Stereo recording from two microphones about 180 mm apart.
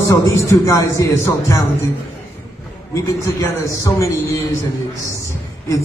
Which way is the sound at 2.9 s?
15° left (ahead or behind).